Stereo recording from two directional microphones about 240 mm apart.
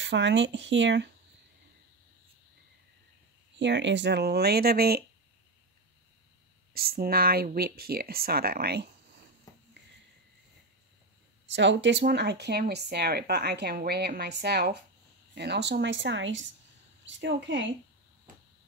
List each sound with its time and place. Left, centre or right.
0.0 s speech: right
3.5 s speech: right
6.7 s speech: right
11.5 s speech: right